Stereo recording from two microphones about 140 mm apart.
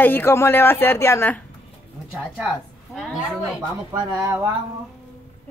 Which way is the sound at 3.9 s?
25° right (ahead or behind).